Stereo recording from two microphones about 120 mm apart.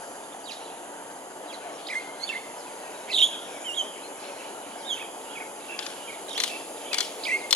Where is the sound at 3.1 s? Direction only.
5° left (ahead or behind).